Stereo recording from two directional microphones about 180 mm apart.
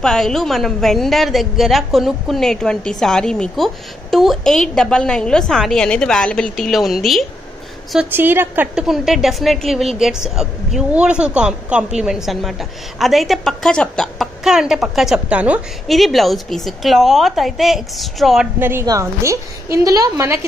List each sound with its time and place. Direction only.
0.0 s a woman's voice: centre (ahead or behind)
18.6 s a woman's voice: 15° right (ahead or behind)